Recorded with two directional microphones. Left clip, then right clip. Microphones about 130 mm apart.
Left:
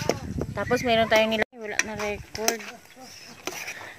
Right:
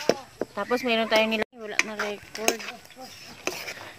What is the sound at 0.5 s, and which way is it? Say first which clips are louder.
Speech: left 3 dB; 20° left (ahead or behind).